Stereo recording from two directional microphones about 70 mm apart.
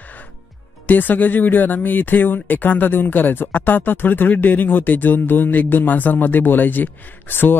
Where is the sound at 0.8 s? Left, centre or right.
Left.